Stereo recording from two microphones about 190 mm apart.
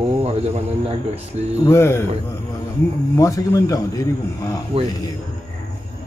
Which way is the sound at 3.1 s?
15° left (ahead or behind).